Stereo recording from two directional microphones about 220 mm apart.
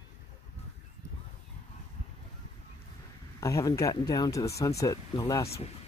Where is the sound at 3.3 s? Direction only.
15° left (ahead or behind).